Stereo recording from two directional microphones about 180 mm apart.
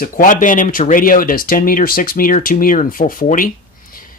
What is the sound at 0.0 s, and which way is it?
Speech, 50° left (ahead or behind).